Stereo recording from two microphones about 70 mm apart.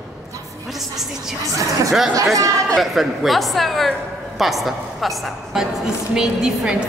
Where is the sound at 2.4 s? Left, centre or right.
Right.